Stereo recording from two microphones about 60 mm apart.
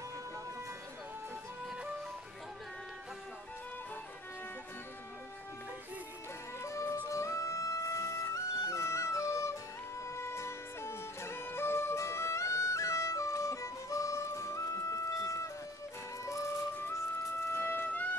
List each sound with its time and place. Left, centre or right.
6.6 s music: left
17.5 s music: left